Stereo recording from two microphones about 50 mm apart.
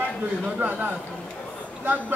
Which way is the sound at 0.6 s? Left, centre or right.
Right.